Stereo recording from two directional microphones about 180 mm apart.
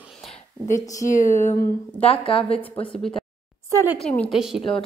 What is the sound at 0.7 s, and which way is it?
Speech, 20° left (ahead or behind).